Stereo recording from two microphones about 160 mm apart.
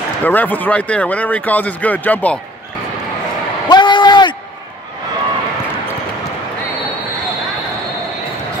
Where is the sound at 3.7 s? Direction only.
30° left (ahead or behind).